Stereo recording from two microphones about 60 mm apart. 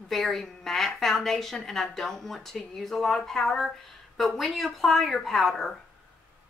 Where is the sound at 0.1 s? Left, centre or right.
Centre.